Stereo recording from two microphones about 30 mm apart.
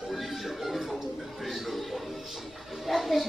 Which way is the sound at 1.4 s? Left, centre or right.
Centre.